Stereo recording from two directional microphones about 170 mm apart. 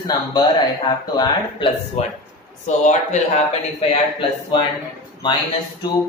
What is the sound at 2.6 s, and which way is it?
Speech, 45° left (ahead or behind).